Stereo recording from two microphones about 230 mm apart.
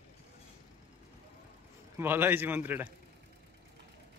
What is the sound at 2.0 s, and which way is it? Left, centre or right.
Speech, centre.